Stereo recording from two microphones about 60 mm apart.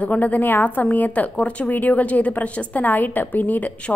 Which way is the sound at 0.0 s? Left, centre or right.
Left.